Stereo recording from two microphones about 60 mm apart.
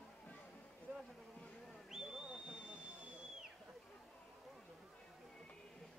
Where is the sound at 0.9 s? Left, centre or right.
Right.